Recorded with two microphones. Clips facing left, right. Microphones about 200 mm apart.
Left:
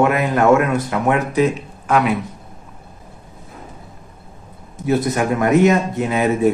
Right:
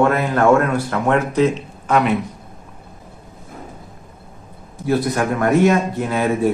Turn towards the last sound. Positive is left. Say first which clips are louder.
# left 1 dB
turn(degrees=15)  # may be behind; listen again after turning